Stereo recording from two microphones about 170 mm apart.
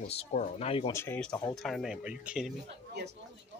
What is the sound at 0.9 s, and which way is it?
Speech, 15° left (ahead or behind).